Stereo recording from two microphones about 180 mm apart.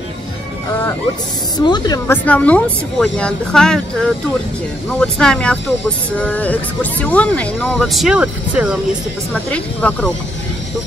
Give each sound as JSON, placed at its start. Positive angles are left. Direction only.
{"t": 1.6, "sound": "speech", "side_deg": 25}
{"t": 2.0, "sound": "speech", "side_deg": 10}
{"t": 9.3, "sound": "speech", "side_deg": 10}